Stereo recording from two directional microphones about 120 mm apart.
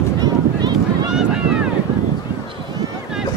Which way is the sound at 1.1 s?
5° right (ahead or behind).